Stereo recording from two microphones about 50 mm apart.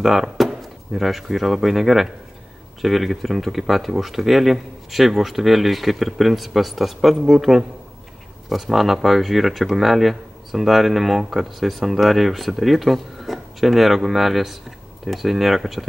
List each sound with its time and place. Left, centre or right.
0.0 s speech: centre